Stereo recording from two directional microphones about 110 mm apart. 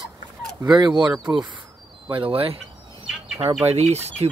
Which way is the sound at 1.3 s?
20° right (ahead or behind).